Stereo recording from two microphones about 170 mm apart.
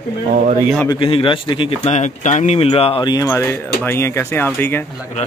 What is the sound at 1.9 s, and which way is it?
Speech, 45° left (ahead or behind).